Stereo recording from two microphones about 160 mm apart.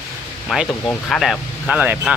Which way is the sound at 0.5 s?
5° right (ahead or behind).